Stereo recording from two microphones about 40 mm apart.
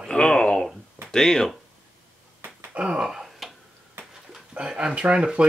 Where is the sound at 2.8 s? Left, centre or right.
Right.